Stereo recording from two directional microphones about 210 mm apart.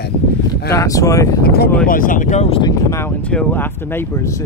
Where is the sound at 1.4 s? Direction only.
50° left (ahead or behind); by 2.7 s 25° left (ahead or behind).